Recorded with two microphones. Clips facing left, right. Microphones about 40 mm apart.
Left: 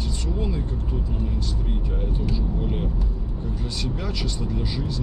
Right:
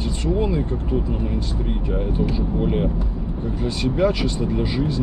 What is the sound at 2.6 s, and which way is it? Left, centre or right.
Speech, right.